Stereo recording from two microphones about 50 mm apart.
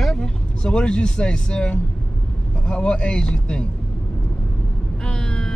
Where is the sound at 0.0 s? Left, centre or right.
Centre.